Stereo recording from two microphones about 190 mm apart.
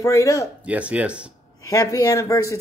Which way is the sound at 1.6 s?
20° left (ahead or behind).